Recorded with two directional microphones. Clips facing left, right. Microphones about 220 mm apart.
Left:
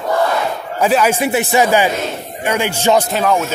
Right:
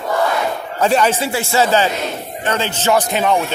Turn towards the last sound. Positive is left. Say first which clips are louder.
# left 1 dB
turn(degrees=0)  # may be behind; listen again after turning